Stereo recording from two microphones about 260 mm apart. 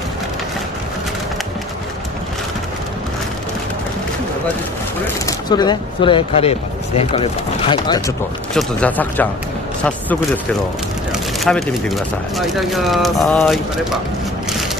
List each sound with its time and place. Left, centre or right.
5.0 s speech: centre
8.5 s speech: centre